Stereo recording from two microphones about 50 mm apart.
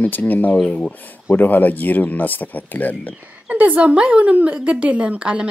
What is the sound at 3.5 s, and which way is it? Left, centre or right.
Speech, right.